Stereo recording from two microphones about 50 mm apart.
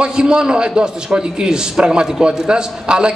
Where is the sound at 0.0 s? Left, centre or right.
Centre.